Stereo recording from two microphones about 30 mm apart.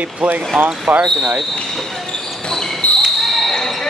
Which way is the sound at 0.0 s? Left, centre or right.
Right.